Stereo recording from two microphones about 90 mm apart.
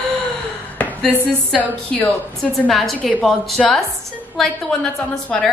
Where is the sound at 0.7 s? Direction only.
15° left (ahead or behind).